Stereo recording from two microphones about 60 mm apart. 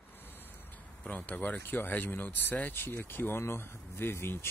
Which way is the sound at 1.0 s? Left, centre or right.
Left.